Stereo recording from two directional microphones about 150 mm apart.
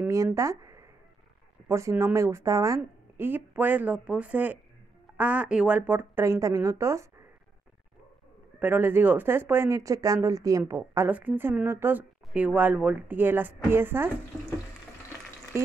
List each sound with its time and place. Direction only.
0.0 s a woman's voice: 20° right (ahead or behind)
8.5 s a woman's voice: 10° right (ahead or behind)